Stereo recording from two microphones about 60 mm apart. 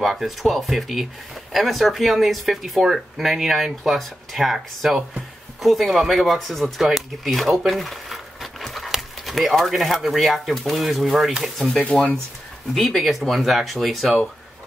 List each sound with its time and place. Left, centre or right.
0.0 s speech: centre
11.9 s speech: centre
12.7 s speech: centre